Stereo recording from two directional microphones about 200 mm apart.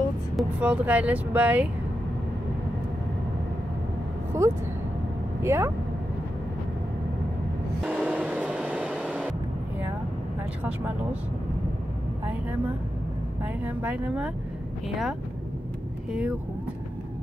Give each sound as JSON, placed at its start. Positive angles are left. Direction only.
{"t": 0.4, "sound": "speech", "side_deg": -5}
{"t": 4.3, "sound": "speech", "side_deg": -15}
{"t": 7.8, "sound": "train", "side_deg": -5}
{"t": 13.7, "sound": "speech", "side_deg": -10}
{"t": 16.1, "sound": "speech", "side_deg": -5}